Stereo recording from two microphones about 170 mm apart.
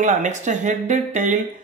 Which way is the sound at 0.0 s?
50° right (ahead or behind).